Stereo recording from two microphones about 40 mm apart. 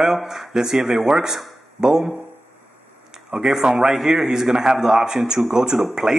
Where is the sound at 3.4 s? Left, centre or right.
Centre.